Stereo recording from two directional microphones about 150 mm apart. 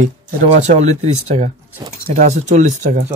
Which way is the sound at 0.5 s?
50° right (ahead or behind).